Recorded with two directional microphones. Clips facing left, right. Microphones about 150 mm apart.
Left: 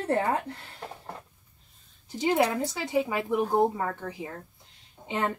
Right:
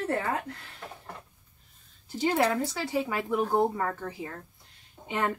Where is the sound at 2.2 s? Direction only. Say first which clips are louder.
Left 1 dB; 15° left (ahead or behind).